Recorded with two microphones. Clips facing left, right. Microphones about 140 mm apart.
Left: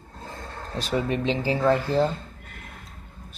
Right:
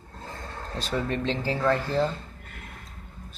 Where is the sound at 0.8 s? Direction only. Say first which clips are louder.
Left 3 dB; 15° left (ahead or behind).